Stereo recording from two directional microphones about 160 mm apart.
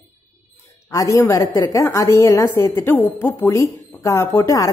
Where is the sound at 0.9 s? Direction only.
20° left (ahead or behind).